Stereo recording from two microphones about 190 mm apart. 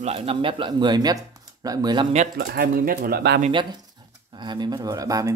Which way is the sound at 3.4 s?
30° right (ahead or behind).